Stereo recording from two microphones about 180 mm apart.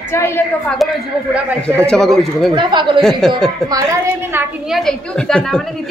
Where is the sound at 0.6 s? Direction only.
Centre (ahead or behind).